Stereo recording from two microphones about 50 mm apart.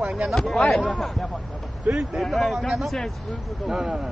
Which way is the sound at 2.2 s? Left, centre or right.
Centre.